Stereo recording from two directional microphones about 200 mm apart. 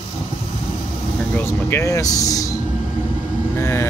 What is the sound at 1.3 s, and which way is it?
Speech, 10° left (ahead or behind).